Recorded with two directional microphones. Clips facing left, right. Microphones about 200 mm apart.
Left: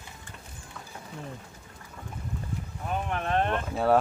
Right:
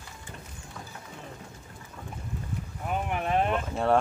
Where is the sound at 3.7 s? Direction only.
5° left (ahead or behind).